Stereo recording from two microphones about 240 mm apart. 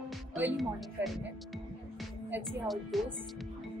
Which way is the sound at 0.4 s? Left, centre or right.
Centre.